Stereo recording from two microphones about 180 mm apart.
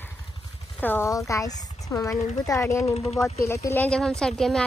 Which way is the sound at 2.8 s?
35° left (ahead or behind).